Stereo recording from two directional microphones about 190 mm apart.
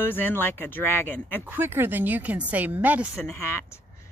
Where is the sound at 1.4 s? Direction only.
10° right (ahead or behind).